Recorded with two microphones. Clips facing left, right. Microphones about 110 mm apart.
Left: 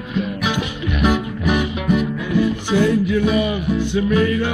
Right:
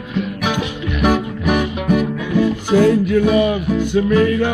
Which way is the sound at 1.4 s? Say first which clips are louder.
Right 2 dB; 60° right (ahead or behind).